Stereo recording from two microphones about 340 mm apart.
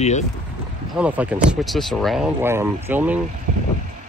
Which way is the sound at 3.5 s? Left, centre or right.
Right.